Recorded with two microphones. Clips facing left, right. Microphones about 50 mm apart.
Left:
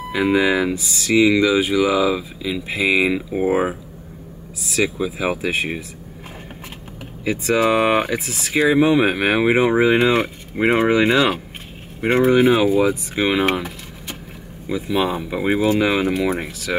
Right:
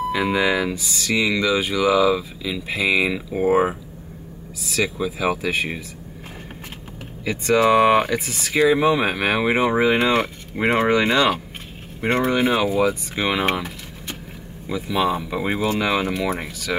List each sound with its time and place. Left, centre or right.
0.1 s speech: centre
7.2 s speech: centre